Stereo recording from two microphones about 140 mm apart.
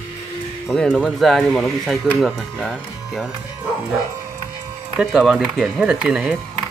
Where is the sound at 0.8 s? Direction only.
Centre (ahead or behind).